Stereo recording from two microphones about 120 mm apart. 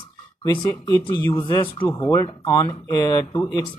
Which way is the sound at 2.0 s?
30° left (ahead or behind).